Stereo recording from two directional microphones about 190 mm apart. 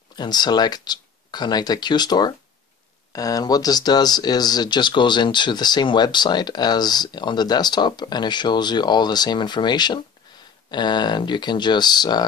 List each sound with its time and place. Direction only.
0.1 s speech: 20° left (ahead or behind)